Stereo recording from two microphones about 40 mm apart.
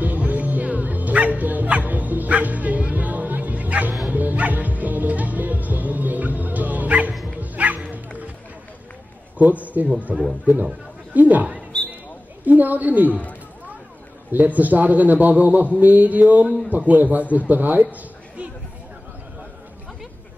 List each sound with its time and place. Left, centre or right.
0.0 s dog: right
4.1 s music: right
7.3 s bow-wow: right
9.4 s a man's voice: right
10.1 s a sound: right
11.1 s a man's voice: right
12.4 s a man's voice: right
14.3 s a man's voice: right
15.8 s a sound: right
16.7 s a man's voice: right